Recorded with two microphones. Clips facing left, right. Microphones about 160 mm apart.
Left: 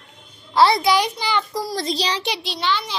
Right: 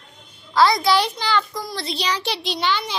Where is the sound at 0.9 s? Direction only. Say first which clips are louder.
Even; 10° left (ahead or behind).